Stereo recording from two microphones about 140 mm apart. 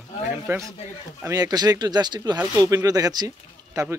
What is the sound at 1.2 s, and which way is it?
A man's voice, 30° right (ahead or behind).